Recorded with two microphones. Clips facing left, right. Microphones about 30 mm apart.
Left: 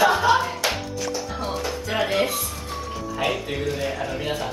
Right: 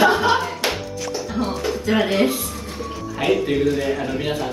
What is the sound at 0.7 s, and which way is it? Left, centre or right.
Music, centre.